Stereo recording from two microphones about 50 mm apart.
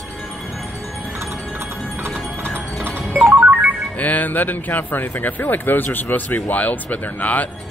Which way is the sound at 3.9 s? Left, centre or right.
Left.